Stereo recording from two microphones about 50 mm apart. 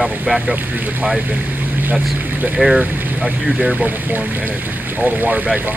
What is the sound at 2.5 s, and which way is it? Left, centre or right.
Speech, centre.